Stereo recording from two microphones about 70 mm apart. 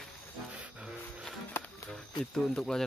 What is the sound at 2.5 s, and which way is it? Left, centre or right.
Speech, centre.